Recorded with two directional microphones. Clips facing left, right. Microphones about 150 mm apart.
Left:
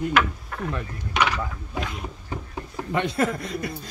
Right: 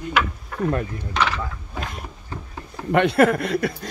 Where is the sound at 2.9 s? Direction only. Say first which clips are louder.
Right 8 dB; 65° right (ahead or behind).